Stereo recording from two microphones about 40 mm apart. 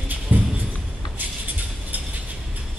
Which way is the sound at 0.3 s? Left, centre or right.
Right.